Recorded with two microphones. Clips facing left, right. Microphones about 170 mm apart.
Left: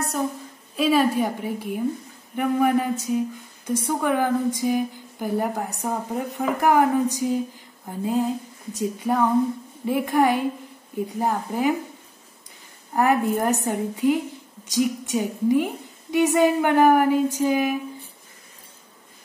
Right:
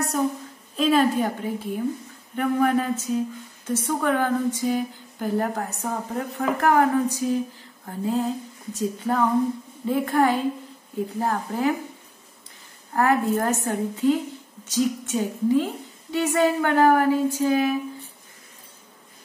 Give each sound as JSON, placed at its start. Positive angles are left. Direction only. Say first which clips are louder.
{"t": 0.7, "sound": "a woman's voice", "louder": "even", "side_deg": 10}
{"t": 7.8, "sound": "female singing", "louder": "even", "side_deg": 15}
{"t": 8.7, "sound": "a woman's voice", "louder": "left 1 dB", "side_deg": 10}
{"t": 12.9, "sound": "a woman's voice", "louder": "left 1 dB", "side_deg": 15}